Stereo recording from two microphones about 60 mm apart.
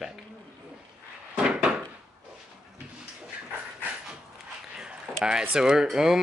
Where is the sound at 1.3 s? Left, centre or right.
Centre.